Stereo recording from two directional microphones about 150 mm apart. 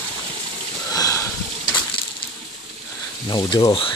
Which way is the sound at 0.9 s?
25° left (ahead or behind).